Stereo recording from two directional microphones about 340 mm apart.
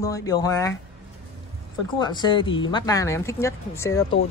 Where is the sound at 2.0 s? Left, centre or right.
Centre.